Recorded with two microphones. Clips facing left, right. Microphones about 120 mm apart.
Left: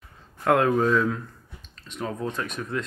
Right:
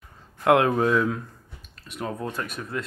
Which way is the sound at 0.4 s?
20° right (ahead or behind).